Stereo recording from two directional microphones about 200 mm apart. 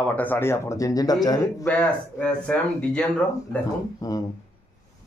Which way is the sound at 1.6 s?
Centre (ahead or behind).